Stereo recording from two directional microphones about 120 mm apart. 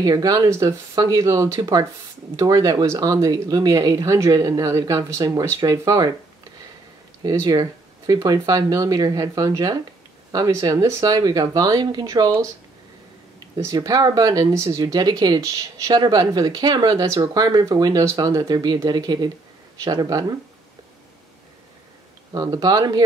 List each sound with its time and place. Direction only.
0.0 s speech: 30° right (ahead or behind)
7.2 s speech: 30° right (ahead or behind)
13.6 s speech: 30° right (ahead or behind)
22.3 s speech: 30° right (ahead or behind)